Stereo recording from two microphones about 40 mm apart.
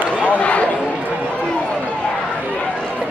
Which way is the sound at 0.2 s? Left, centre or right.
Left.